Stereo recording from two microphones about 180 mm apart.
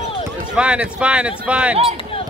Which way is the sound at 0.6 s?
5° right (ahead or behind).